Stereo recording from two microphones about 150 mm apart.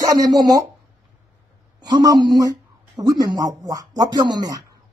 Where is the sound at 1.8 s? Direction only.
25° right (ahead or behind).